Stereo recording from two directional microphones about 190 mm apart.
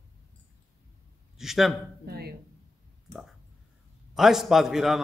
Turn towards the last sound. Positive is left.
turn(degrees=0)  # may be behind; listen again after turning